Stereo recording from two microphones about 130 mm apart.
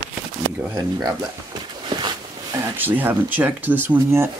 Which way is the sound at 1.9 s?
35° right (ahead or behind).